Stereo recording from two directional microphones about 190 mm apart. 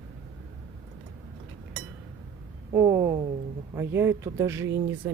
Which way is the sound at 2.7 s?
15° right (ahead or behind).